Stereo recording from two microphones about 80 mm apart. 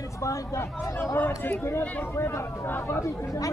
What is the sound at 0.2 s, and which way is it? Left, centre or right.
Speech, left.